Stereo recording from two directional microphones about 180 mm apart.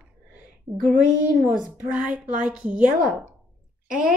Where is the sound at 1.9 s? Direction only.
5° right (ahead or behind).